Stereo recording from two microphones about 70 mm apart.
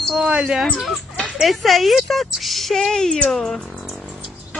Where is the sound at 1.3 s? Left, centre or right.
Centre.